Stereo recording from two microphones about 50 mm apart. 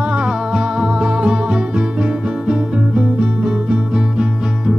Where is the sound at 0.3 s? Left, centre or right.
Centre.